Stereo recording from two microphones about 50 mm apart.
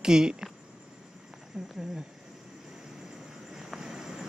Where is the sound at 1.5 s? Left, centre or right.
Centre.